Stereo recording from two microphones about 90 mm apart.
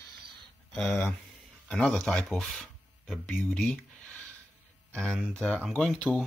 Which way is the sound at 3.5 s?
10° left (ahead or behind).